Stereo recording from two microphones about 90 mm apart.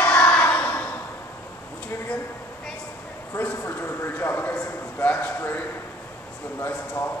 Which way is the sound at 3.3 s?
25° left (ahead or behind).